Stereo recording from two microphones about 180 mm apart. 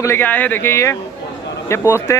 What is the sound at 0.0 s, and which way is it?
Speech, 10° left (ahead or behind).